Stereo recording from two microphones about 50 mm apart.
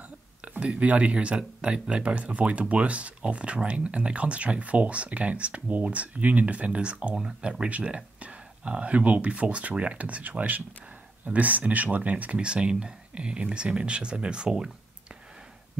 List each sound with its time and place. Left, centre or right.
0.4 s speech: right